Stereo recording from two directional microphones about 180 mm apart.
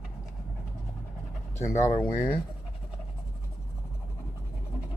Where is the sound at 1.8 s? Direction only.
15° left (ahead or behind).